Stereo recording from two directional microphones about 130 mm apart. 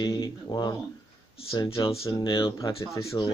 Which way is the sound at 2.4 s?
25° left (ahead or behind).